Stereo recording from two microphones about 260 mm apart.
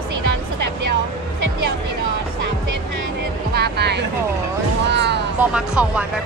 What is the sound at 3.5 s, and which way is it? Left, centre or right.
Speech, right.